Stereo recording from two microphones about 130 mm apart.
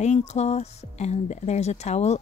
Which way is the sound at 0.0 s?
60° left (ahead or behind).